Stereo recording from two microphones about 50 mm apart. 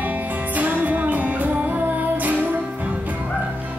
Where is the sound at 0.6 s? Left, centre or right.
Right.